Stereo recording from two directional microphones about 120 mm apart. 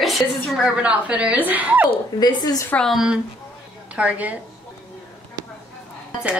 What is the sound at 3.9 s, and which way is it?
Speech, 10° right (ahead or behind).